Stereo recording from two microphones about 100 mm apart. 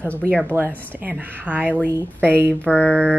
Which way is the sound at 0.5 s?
30° right (ahead or behind).